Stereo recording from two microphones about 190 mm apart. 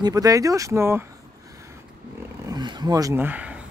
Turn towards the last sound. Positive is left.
turn(degrees=-10)  # may be behind; listen again after turning